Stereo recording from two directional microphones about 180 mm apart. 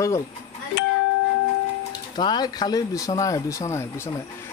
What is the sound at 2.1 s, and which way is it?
Speech, 25° left (ahead or behind).